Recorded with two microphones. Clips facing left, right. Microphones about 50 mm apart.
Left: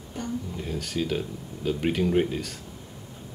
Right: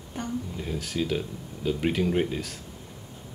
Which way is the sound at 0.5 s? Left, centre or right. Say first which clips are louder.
Even; centre.